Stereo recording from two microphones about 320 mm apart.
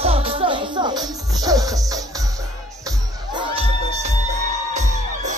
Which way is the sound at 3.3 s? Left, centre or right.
Centre.